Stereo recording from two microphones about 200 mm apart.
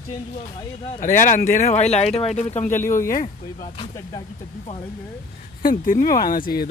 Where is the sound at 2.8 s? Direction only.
15° left (ahead or behind).